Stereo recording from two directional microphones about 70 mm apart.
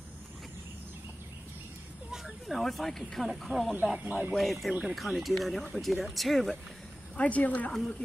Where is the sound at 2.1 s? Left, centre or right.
Centre.